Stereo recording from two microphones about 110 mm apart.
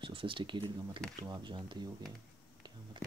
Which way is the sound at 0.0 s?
50° right (ahead or behind).